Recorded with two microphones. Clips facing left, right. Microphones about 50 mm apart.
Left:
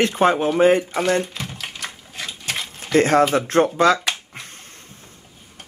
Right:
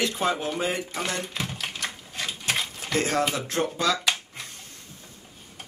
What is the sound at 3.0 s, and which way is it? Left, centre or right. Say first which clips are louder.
Speech: left 10 dB; left.